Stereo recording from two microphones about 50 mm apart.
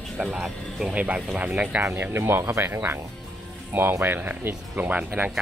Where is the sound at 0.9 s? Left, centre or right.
Right.